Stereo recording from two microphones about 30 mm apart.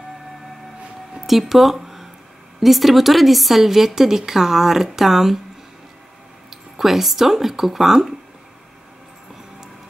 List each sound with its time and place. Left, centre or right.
1.2 s a woman's voice: centre
6.5 s speech: centre